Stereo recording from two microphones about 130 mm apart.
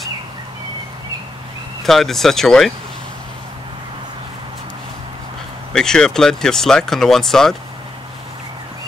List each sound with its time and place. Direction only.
1.8 s speech: centre (ahead or behind)
5.7 s speech: 5° left (ahead or behind)